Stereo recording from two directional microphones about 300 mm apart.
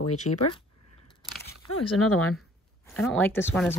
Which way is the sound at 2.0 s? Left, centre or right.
Left.